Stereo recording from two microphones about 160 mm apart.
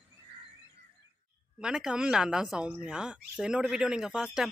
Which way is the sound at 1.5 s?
5° right (ahead or behind).